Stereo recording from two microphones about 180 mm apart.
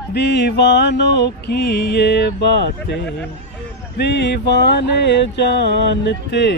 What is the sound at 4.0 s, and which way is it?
Music, 70° left (ahead or behind).